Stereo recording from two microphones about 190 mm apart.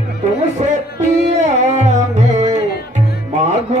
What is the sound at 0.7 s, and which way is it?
Music, 40° right (ahead or behind).